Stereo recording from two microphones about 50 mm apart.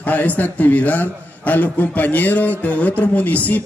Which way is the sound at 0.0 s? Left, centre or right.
Left.